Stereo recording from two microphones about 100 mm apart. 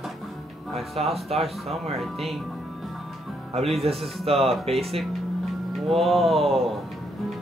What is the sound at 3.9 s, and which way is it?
Speech, 80° right.